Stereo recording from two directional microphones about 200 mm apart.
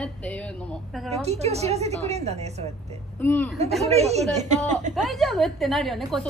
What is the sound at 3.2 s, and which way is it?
Speech, 10° left (ahead or behind).